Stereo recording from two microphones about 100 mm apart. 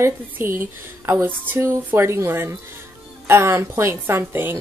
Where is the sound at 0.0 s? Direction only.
25° right (ahead or behind).